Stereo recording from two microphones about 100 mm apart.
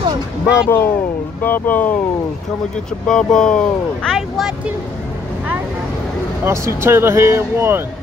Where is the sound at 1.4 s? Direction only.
20° left (ahead or behind).